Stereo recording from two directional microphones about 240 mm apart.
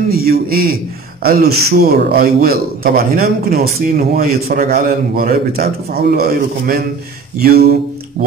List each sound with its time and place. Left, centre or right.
0.1 s a man's voice: right